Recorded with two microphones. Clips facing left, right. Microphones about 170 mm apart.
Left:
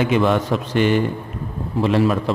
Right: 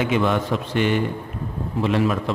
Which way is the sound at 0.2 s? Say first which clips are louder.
Left 3 dB; 35° left (ahead or behind).